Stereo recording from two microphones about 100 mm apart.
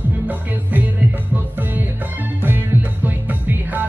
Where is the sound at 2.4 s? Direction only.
20° right (ahead or behind).